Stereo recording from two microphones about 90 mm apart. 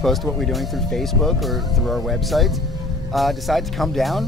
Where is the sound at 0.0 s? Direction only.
Centre (ahead or behind).